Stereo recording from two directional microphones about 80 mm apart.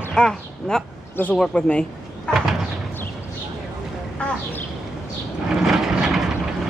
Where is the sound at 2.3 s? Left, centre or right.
Centre.